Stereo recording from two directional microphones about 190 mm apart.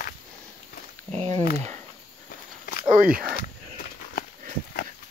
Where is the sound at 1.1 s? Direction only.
35° right (ahead or behind).